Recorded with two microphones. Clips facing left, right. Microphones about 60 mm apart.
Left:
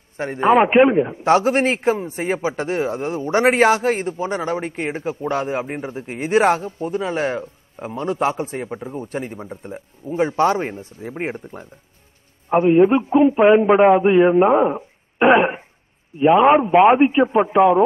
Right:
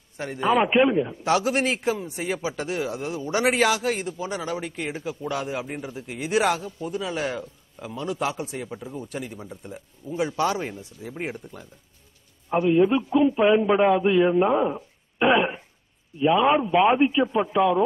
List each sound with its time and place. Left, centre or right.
0.2 s a man's voice: left